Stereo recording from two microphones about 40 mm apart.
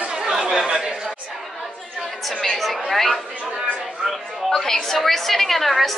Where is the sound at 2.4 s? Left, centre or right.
Centre.